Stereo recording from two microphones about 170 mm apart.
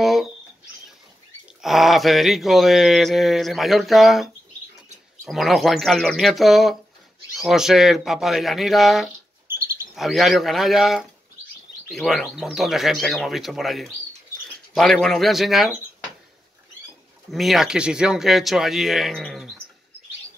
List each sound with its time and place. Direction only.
0.0 s a sound: centre (ahead or behind)
1.6 s mantra: centre (ahead or behind)
9.5 s bird: 15° right (ahead or behind)
9.9 s mantra: centre (ahead or behind)
17.3 s mantra: centre (ahead or behind)